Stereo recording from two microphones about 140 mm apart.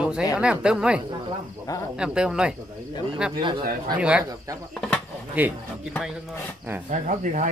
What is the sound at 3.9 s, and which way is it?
Speech, 5° right (ahead or behind).